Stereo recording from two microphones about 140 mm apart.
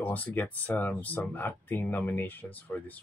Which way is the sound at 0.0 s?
10° left (ahead or behind).